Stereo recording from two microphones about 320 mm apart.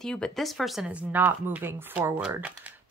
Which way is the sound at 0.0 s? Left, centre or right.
Centre.